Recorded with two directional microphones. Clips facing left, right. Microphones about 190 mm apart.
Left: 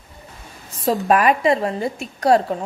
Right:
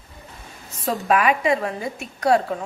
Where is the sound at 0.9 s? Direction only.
40° left (ahead or behind).